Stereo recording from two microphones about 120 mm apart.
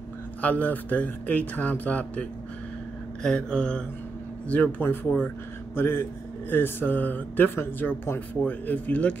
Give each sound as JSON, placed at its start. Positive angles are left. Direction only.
{"t": 0.4, "sound": "speech", "side_deg": 10}